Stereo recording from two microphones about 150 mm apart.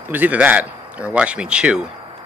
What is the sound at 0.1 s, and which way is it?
A man's voice, 10° right (ahead or behind).